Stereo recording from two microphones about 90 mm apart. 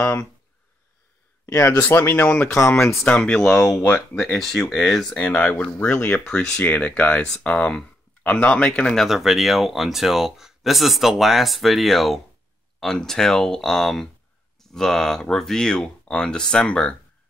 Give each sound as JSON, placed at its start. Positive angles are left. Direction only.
{"t": 0.0, "sound": "speech", "side_deg": 25}
{"t": 1.4, "sound": "speech", "side_deg": 35}
{"t": 1.8, "sound": "speech", "side_deg": 25}
{"t": 3.0, "sound": "speech", "side_deg": 5}
{"t": 5.1, "sound": "speech", "side_deg": 15}
{"t": 6.2, "sound": "speech", "side_deg": 10}